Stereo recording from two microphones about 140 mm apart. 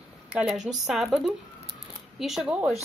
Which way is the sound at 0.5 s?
55° right (ahead or behind).